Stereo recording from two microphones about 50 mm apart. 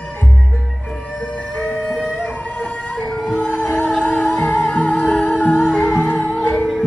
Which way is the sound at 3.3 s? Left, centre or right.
Left.